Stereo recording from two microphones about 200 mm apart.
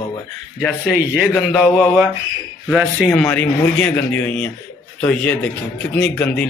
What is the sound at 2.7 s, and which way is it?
Speech, 5° right (ahead or behind).